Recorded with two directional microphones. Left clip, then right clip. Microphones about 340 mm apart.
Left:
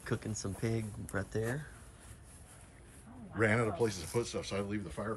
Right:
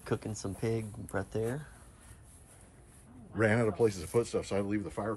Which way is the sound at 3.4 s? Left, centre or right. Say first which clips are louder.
Right 3 dB; right.